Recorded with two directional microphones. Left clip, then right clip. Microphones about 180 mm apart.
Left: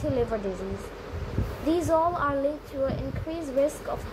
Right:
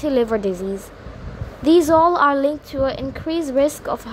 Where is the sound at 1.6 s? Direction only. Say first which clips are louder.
Right 10 dB; 50° right (ahead or behind).